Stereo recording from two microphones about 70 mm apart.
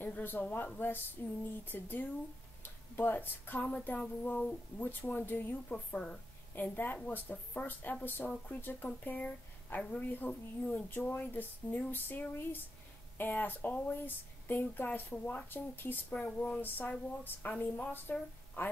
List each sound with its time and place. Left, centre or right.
0.0 s speech: left